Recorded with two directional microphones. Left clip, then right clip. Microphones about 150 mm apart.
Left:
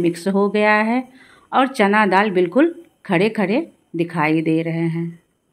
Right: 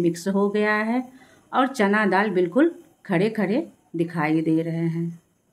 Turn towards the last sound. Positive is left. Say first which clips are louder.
# left 4 dB
turn(degrees=25)  # may be behind; listen again after turning